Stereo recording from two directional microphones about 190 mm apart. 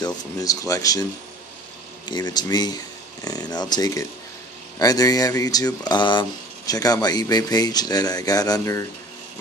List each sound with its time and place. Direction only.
0.4 s speech: 20° left (ahead or behind)
2.0 s speech: 20° left (ahead or behind)